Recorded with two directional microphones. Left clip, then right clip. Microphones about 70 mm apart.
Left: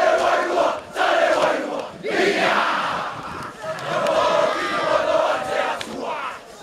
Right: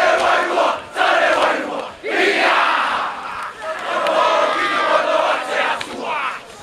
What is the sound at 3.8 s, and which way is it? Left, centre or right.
Crowd, left.